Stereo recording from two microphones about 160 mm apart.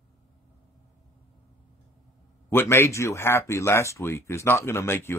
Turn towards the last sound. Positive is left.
turn(degrees=15)  # may be behind; listen again after turning